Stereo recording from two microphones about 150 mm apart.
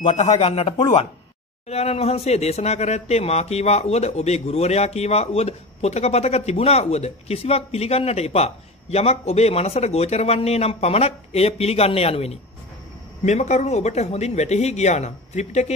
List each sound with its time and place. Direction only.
0.0 s speech: 50° left (ahead or behind)